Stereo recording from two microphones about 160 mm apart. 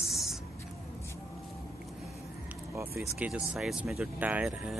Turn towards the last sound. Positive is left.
turn(degrees=-5)  # may be behind; listen again after turning